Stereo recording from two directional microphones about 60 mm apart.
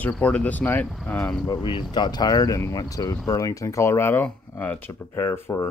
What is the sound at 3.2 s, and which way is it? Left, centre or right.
Speech, left.